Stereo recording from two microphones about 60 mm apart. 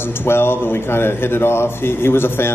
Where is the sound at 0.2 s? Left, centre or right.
Left.